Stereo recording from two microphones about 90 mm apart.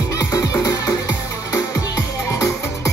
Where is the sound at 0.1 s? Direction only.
40° left (ahead or behind).